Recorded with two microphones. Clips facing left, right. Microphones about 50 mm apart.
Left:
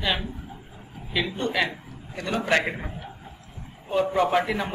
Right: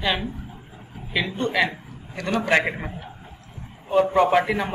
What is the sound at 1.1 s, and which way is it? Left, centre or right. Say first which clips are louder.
Speech: right 2 dB; right.